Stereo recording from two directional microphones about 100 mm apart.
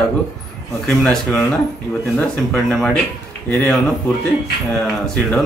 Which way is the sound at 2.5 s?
5° left (ahead or behind).